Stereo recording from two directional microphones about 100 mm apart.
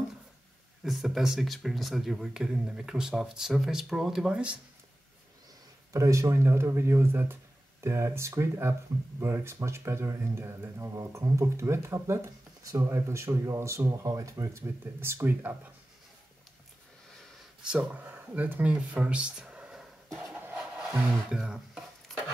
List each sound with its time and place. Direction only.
0.8 s speech: centre (ahead or behind)
5.9 s speech: 30° right (ahead or behind)
17.6 s speech: 15° right (ahead or behind)
20.3 s a sound: 15° right (ahead or behind)
21.3 s speech: 10° right (ahead or behind)
22.1 s stir: 5° left (ahead or behind)